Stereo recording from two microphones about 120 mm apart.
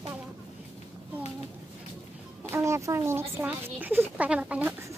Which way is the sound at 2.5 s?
25° right (ahead or behind).